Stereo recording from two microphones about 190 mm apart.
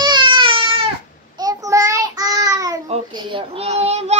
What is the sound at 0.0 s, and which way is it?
Baby cry, 25° right (ahead or behind).